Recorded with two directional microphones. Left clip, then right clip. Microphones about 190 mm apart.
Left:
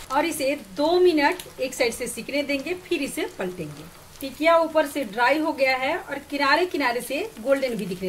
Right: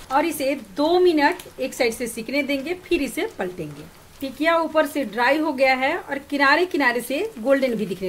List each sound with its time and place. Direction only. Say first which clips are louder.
0.1 s a woman's voice: right 2 dB; 25° right (ahead or behind)